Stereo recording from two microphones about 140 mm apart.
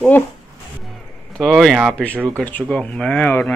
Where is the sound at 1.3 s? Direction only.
Centre (ahead or behind).